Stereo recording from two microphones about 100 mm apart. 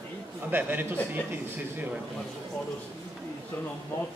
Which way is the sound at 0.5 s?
20° right (ahead or behind).